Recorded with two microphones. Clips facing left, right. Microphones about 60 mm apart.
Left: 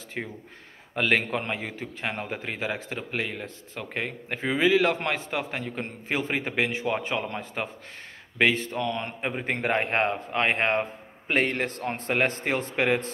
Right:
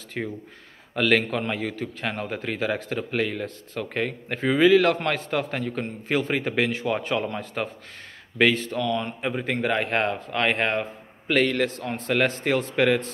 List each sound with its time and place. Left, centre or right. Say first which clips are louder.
0.2 s a man's voice: right 4 dB; centre
9.6 s a man's voice: right 1 dB; left
9.8 s a man's voice: right 1 dB; left